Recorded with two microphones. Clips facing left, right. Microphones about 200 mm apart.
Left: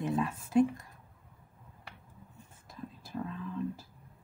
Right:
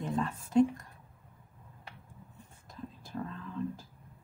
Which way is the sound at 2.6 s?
5° left (ahead or behind).